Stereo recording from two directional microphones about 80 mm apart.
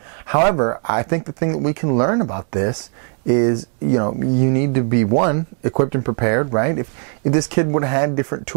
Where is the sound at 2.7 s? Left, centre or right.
Centre.